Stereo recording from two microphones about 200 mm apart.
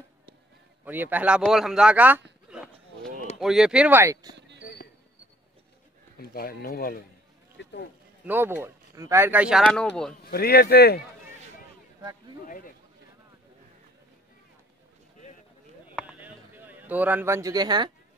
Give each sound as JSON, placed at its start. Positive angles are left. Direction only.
{"t": 0.8, "sound": "speech", "side_deg": -10}
{"t": 2.5, "sound": "a sound", "side_deg": -5}
{"t": 3.3, "sound": "speech", "side_deg": 0}
{"t": 6.1, "sound": "speech", "side_deg": 50}
{"t": 7.6, "sound": "a sound", "side_deg": 60}
{"t": 8.3, "sound": "speech", "side_deg": -10}
{"t": 10.3, "sound": "speech", "side_deg": 50}
{"t": 12.4, "sound": "speech", "side_deg": 45}
{"t": 16.0, "sound": "a sound", "side_deg": -5}